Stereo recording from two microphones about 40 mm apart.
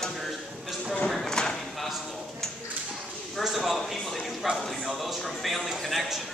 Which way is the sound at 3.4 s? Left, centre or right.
Centre.